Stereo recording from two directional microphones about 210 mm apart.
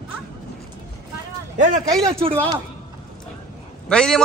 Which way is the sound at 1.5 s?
35° right (ahead or behind).